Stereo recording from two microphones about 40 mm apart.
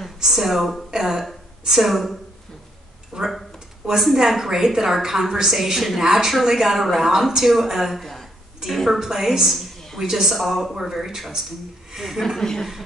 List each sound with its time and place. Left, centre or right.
0.0 s a woman's voice: centre
3.1 s a woman's voice: centre
4.0 s a woman's voice: centre
9.0 s a woman's voice: centre
12.4 s a woman's voice: centre